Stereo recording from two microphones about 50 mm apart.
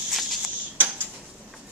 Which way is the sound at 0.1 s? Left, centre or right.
Centre.